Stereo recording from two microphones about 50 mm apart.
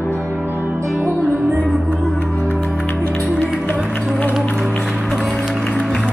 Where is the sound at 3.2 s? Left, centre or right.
Left.